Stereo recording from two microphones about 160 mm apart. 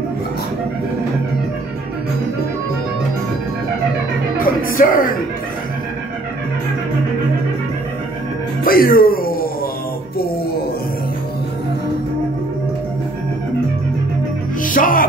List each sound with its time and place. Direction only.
4.4 s music: 60° left (ahead or behind)
8.6 s music: 65° left (ahead or behind)
14.6 s music: 60° left (ahead or behind)